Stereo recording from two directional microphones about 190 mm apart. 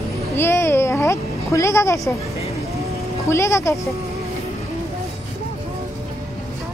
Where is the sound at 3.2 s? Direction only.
15° left (ahead or behind).